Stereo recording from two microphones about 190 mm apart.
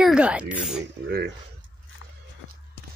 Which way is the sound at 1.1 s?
55° right (ahead or behind).